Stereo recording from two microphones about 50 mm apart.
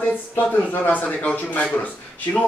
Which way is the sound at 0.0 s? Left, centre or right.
Left.